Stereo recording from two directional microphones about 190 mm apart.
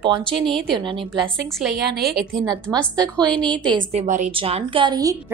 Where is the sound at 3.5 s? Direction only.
5° left (ahead or behind).